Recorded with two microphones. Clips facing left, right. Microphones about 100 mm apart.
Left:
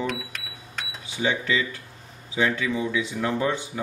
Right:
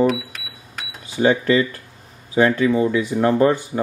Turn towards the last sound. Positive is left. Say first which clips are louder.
# right 9 dB
turn(degrees=-50)  # may be behind; listen again after turning